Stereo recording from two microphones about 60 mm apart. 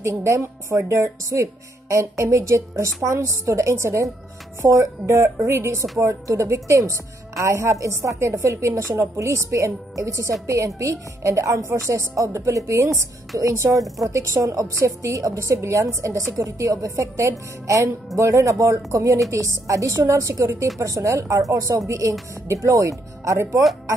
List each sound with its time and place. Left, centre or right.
0.0 s a woman's voice: right
15.0 s speech: right
16.3 s speech: right